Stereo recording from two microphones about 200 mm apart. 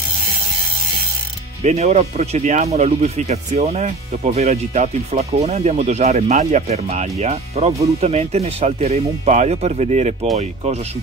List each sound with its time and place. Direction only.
1.6 s speech: 35° right (ahead or behind)